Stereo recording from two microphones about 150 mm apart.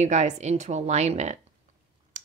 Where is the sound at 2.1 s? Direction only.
60° right (ahead or behind).